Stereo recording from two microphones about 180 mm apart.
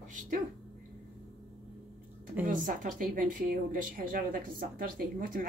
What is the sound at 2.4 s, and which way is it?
A woman's voice, 50° right (ahead or behind).